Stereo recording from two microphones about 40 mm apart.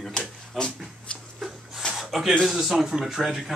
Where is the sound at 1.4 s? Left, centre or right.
Centre.